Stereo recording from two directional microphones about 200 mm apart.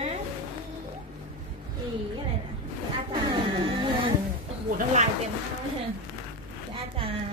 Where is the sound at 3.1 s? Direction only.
25° right (ahead or behind).